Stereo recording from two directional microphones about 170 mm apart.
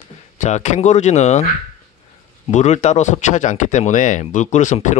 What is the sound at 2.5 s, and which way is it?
Speech, 45° left (ahead or behind).